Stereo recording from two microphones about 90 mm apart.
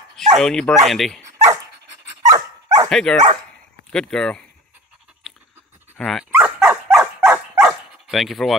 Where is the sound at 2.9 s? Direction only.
10° left (ahead or behind).